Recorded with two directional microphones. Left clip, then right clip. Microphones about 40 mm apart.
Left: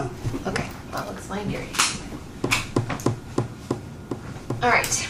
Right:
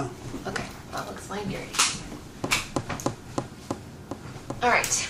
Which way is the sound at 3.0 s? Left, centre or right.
Right.